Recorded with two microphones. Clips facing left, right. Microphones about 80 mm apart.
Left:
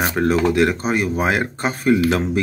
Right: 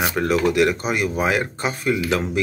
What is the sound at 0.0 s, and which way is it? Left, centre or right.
Speech, left.